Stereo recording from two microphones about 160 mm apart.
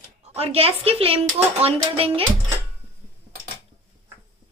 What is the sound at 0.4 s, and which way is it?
A woman's voice, 40° right (ahead or behind).